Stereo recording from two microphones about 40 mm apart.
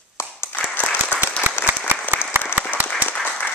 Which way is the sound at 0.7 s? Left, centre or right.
Left.